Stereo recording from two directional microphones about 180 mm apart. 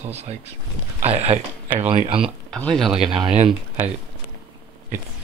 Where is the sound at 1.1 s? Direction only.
35° right (ahead or behind).